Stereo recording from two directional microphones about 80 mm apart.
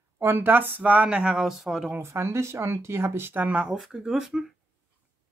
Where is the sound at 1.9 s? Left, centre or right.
Right; by 3.8 s centre.